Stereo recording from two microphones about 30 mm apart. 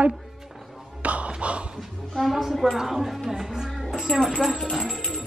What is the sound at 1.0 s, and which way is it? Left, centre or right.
Tap, right.